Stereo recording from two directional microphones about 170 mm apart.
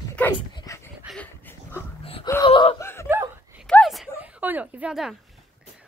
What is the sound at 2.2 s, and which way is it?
Speech, 20° left (ahead or behind).